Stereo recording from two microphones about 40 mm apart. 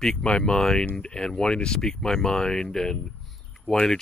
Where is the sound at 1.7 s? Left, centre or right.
Centre.